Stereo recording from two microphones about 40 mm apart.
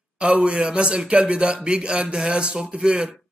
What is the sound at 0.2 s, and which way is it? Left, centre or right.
Speech, right.